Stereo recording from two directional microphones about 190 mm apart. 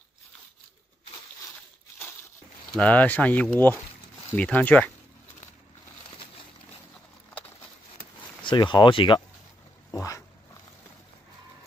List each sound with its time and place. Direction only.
2.7 s speech: 5° left (ahead or behind)
8.5 s speech: 25° left (ahead or behind)
9.8 s a sound: 15° left (ahead or behind)